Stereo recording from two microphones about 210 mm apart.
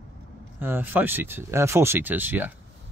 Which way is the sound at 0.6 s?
10° right (ahead or behind).